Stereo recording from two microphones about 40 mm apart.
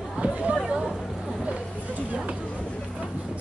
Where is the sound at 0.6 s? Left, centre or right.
Centre.